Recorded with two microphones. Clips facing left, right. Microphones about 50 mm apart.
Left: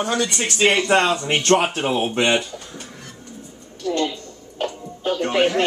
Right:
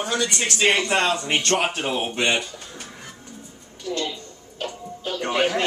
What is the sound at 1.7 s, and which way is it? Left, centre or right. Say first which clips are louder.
Speech: left 4 dB; centre.